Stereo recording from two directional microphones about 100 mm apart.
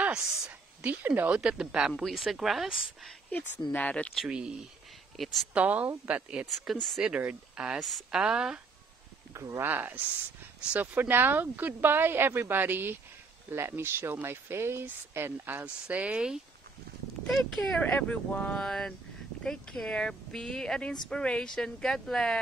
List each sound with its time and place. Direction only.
0.0 s a sound: 5° right (ahead or behind)
0.5 s a sound: 20° right (ahead or behind)
1.4 s speech: 5° right (ahead or behind)
3.3 s speech: 15° left (ahead or behind)
4.1 s speech: 5° right (ahead or behind)
5.5 s speech: 15° right (ahead or behind)
6.6 s speech: centre (ahead or behind)
7.0 s speech: 10° right (ahead or behind)
9.3 s speech: 25° right (ahead or behind); by 16.3 s 10° right (ahead or behind)
17.3 s speech: 5° left (ahead or behind)